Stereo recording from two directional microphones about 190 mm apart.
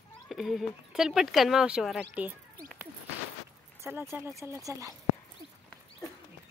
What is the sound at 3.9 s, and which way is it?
Speech, 10° right (ahead or behind).